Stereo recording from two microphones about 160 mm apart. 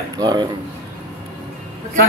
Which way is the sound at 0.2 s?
25° right (ahead or behind).